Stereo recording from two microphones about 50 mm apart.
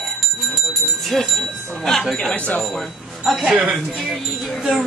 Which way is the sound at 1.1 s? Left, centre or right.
Centre.